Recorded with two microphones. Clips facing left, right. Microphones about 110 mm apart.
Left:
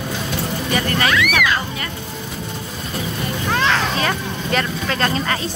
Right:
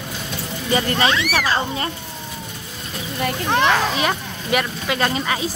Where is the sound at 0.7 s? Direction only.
25° right (ahead or behind).